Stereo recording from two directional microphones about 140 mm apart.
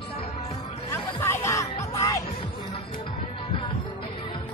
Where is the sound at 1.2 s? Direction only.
20° left (ahead or behind).